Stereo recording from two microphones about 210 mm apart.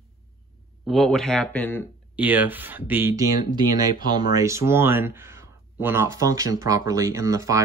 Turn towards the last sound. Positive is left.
turn(degrees=-15)  # may be behind; listen again after turning